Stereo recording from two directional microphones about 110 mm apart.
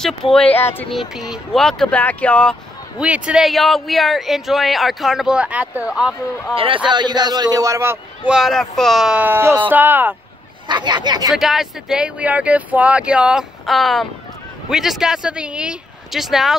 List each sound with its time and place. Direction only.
0.0 s speech: 5° left (ahead or behind)
0.5 s speech: 20° left (ahead or behind)
0.9 s speech: 5° right (ahead or behind); by 2.5 s 10° left (ahead or behind)
3.0 s speech: 10° right (ahead or behind)
6.5 s a man's voice: 55° right (ahead or behind)
6.9 s speech: 40° right (ahead or behind); by 8.0 s 25° right (ahead or behind)
8.3 s speech: centre (ahead or behind); by 10.1 s 15° right (ahead or behind)
10.7 s speech: 40° right (ahead or behind)
11.3 s speech: 5° right (ahead or behind)